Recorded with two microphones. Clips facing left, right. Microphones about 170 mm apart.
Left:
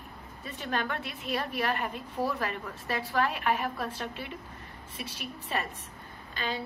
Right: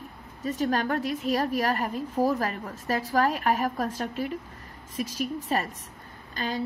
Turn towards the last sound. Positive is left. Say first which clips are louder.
# right 3 dB
turn(degrees=-40)  # may be behind; listen again after turning